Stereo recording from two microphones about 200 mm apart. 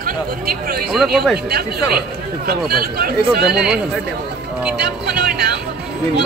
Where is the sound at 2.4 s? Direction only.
50° right (ahead or behind).